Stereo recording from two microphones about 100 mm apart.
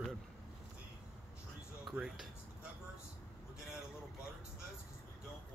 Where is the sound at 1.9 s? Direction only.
5° right (ahead or behind).